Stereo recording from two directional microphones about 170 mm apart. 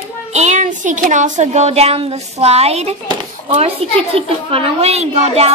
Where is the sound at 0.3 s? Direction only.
45° right (ahead or behind).